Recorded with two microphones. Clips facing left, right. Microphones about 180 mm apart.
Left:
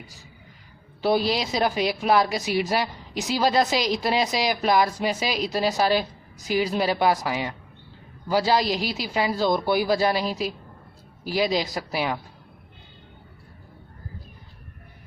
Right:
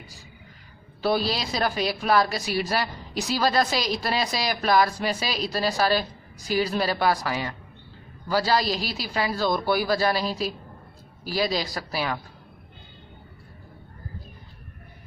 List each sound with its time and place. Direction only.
1.0 s a woman's voice: 20° left (ahead or behind)